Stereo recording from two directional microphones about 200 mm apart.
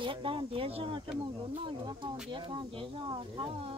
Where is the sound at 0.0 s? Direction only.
25° right (ahead or behind).